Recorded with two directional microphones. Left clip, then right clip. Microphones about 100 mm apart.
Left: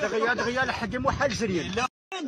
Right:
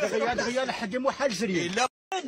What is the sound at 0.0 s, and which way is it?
Speech, 35° right (ahead or behind).